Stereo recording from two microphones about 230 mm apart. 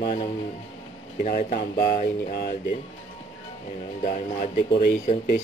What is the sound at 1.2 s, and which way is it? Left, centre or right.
Speech, left.